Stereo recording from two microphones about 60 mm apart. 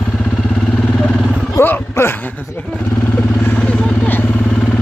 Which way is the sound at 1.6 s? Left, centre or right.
Left.